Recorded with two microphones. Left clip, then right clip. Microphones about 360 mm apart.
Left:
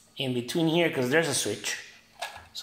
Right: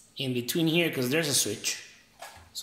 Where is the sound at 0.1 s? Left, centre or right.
Centre.